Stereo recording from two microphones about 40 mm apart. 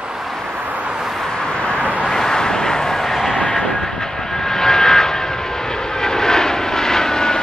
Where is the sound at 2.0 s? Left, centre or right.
Centre.